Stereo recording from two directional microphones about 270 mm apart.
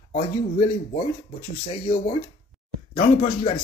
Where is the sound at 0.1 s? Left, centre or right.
Left.